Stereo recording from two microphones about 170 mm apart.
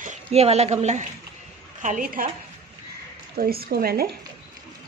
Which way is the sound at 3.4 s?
65° right (ahead or behind).